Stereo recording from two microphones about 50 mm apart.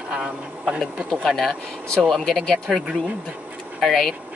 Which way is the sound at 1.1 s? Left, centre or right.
Centre.